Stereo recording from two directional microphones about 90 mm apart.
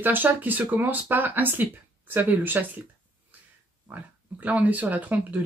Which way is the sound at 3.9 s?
15° right (ahead or behind).